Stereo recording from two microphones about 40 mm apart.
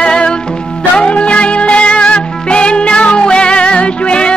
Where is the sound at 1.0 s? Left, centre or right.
Left.